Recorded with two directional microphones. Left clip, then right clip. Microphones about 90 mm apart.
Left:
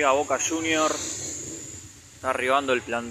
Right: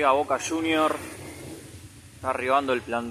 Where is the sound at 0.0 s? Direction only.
5° right (ahead or behind).